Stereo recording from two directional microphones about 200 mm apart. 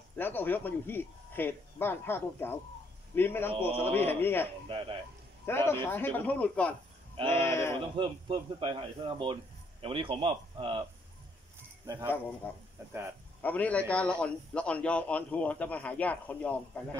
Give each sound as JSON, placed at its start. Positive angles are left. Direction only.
{"t": 0.2, "sound": "speech", "side_deg": 10}
{"t": 4.6, "sound": "a man's voice", "side_deg": -25}
{"t": 5.5, "sound": "speech", "side_deg": 10}
{"t": 7.2, "sound": "a man's voice", "side_deg": -25}
{"t": 7.4, "sound": "speech", "side_deg": 15}
{"t": 7.9, "sound": "a man's voice", "side_deg": -25}
{"t": 11.8, "sound": "speech", "side_deg": -15}
{"t": 13.4, "sound": "speech", "side_deg": 10}